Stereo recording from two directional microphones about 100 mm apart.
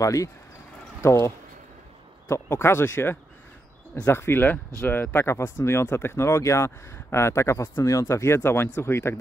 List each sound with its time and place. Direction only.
0.0 s speech: 30° left (ahead or behind)